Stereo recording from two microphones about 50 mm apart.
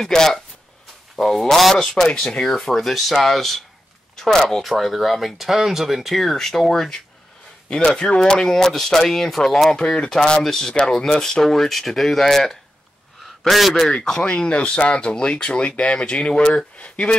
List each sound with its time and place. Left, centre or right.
0.0 s speech: centre
4.6 s a man's voice: centre
13.9 s speech: centre